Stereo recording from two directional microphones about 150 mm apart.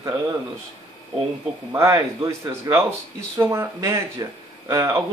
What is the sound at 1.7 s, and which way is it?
Speech, 20° right (ahead or behind).